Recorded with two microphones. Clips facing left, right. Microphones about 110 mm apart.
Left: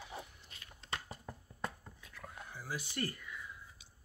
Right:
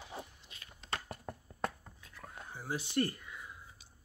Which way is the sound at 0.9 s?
60° right (ahead or behind).